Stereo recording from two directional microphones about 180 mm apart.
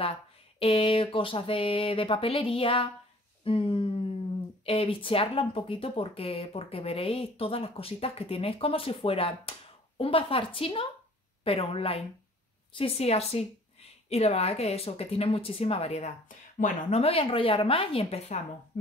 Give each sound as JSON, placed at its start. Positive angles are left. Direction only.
{"t": 0.6, "sound": "speech", "side_deg": 30}
{"t": 3.4, "sound": "a sound", "side_deg": 30}
{"t": 4.6, "sound": "speech", "side_deg": 30}
{"t": 16.5, "sound": "speech", "side_deg": 45}
{"t": 17.0, "sound": "speech", "side_deg": 30}